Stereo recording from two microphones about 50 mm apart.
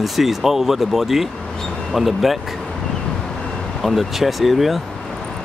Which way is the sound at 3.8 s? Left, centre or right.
Centre.